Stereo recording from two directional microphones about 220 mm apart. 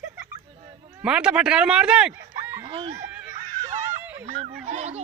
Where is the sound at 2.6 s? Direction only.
20° right (ahead or behind).